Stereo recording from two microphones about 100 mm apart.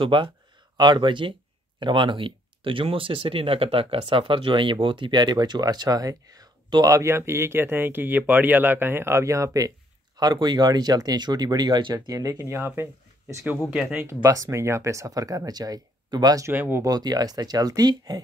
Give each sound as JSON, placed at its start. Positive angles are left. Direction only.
{"t": 0.0, "sound": "speech", "side_deg": -55}
{"t": 10.1, "sound": "speech", "side_deg": -45}
{"t": 16.4, "sound": "speech", "side_deg": -20}
{"t": 16.8, "sound": "speech", "side_deg": -40}